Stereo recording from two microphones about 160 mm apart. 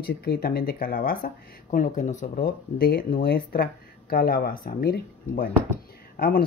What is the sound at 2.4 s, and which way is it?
Speech, 70° left (ahead or behind).